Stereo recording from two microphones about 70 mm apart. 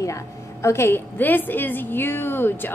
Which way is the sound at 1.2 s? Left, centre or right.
Left.